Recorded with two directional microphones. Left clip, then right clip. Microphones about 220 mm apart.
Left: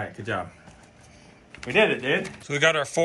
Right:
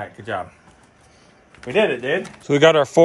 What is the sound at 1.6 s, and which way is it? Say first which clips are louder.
Speech: right 2 dB; 50° right (ahead or behind).